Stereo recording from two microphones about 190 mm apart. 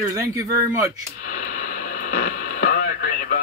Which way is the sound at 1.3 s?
45° left (ahead or behind).